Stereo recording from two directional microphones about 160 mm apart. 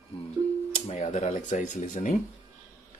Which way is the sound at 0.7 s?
45° left (ahead or behind).